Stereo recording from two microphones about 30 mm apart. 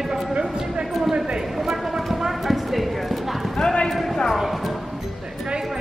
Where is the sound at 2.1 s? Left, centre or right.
Centre.